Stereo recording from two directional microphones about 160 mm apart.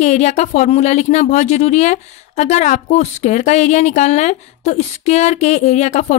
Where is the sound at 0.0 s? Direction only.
45° left (ahead or behind).